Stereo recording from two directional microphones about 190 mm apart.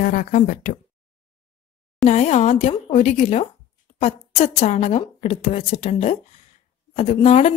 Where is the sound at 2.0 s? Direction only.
35° left (ahead or behind).